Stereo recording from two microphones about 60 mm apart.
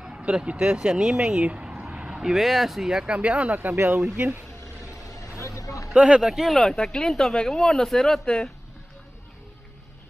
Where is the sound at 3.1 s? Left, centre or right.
Centre.